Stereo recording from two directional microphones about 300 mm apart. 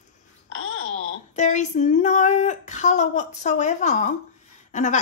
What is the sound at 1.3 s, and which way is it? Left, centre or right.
Speech, left.